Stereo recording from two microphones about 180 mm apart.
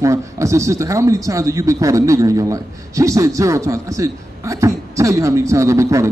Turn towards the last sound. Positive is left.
turn(degrees=-15)  # may be behind; listen again after turning